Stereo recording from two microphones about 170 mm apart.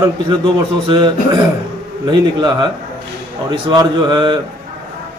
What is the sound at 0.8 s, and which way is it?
A man's voice, 25° right (ahead or behind).